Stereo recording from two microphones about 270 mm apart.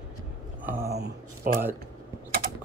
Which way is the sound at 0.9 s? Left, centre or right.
Right.